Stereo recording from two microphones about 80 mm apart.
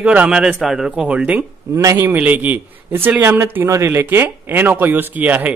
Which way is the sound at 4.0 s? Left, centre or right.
Right.